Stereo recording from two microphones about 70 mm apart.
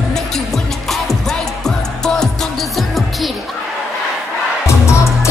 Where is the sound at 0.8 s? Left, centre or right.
Centre.